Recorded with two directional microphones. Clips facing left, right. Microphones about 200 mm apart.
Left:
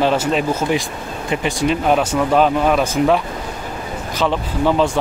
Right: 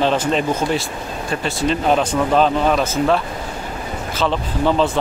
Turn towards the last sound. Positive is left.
turn(degrees=10)  # may be behind; listen again after turning